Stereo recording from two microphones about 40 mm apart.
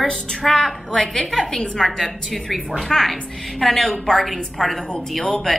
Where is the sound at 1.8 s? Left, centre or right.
Centre.